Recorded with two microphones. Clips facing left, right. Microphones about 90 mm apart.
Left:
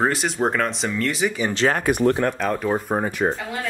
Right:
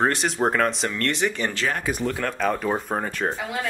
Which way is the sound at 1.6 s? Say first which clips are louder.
Left 8 dB; 60° left (ahead or behind).